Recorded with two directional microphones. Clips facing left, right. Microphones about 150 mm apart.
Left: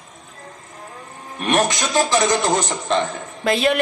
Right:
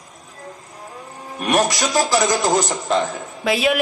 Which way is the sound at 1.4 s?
Centre (ahead or behind).